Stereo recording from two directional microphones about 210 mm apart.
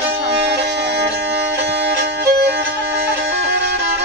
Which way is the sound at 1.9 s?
50° right (ahead or behind).